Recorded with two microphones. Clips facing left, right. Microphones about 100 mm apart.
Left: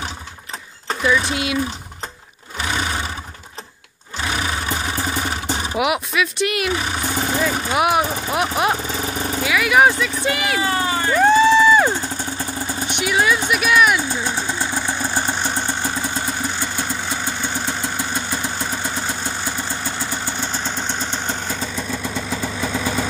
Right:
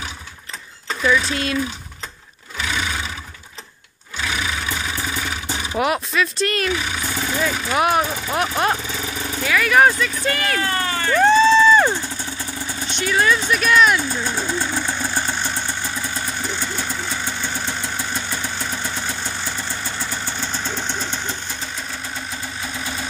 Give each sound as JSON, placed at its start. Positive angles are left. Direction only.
{"t": 1.0, "sound": "speech", "side_deg": 10}
{"t": 2.6, "sound": "roar", "side_deg": 40}
{"t": 4.2, "sound": "vehicle", "side_deg": 40}
{"t": 5.8, "sound": "speech", "side_deg": 10}
{"t": 6.7, "sound": "vehicle", "side_deg": 40}
{"t": 7.7, "sound": "speech", "side_deg": 10}
{"t": 8.8, "sound": "vehicle", "side_deg": 40}
{"t": 9.4, "sound": "speech", "side_deg": 10}
{"t": 11.1, "sound": "a sound", "side_deg": 10}
{"t": 12.8, "sound": "speech", "side_deg": 15}
{"t": 14.3, "sound": "vehicle", "side_deg": 10}